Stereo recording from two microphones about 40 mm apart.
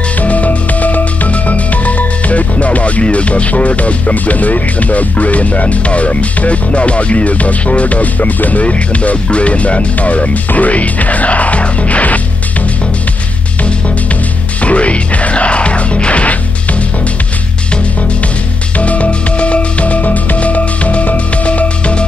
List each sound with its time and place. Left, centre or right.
0.2 s music: left
14.6 s music: left
18.8 s music: left